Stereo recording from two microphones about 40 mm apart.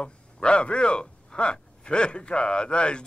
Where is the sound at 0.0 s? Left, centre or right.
Left.